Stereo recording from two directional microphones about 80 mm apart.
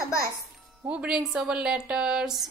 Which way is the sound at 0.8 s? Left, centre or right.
Centre.